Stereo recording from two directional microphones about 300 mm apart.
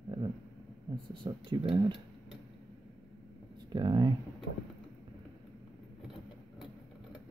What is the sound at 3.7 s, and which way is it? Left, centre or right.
Speech, centre.